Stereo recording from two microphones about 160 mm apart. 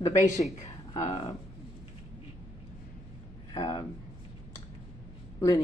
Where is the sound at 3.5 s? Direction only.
25° left (ahead or behind).